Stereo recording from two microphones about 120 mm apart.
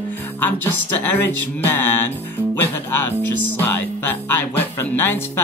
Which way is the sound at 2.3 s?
15° left (ahead or behind).